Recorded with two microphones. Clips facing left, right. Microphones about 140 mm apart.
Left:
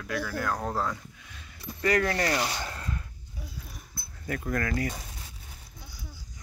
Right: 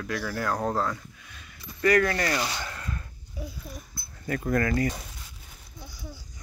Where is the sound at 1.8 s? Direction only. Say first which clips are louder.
Right 3 dB; 20° left (ahead or behind).